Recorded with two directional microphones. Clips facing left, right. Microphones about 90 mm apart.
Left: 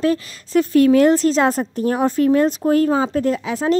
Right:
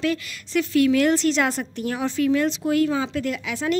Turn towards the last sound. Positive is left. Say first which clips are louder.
# left 6 dB
turn(degrees=35)  # may be behind; listen again after turning